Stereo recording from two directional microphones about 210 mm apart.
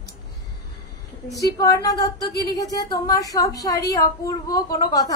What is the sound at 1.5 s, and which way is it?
A woman's voice, 15° left (ahead or behind).